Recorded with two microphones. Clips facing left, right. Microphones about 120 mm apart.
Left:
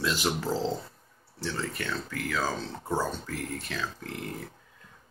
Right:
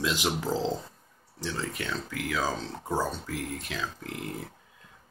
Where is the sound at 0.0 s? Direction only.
15° right (ahead or behind).